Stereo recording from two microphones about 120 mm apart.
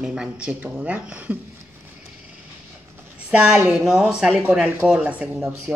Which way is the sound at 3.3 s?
10° right (ahead or behind).